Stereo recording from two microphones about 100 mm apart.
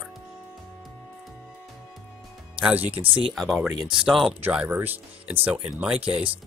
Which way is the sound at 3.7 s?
45° right (ahead or behind).